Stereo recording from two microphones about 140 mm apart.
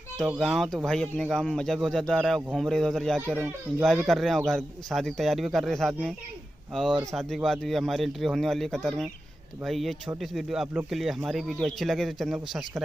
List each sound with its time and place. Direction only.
0.4 s speech: centre (ahead or behind)